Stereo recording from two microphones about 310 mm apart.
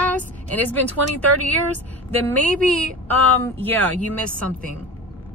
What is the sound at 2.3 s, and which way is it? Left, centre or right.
Speech, centre.